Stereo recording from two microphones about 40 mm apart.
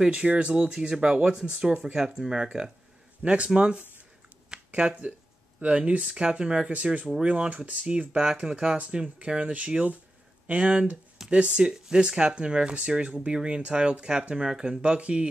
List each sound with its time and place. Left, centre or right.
0.0 s speech: right
7.2 s speech: right
7.9 s speech: right